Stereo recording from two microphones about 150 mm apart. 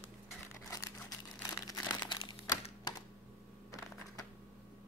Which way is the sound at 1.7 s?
25° left (ahead or behind).